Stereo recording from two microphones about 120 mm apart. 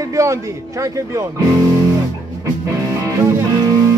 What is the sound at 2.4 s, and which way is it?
Music, 25° right (ahead or behind).